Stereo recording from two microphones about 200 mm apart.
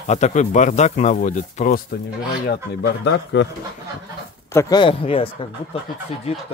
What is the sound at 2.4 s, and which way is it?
Speech, 55° left (ahead or behind).